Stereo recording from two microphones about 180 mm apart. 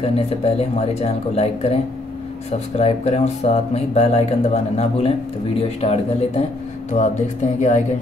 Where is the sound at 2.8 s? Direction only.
35° left (ahead or behind).